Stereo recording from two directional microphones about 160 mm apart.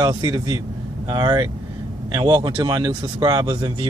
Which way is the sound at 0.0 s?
25° right (ahead or behind).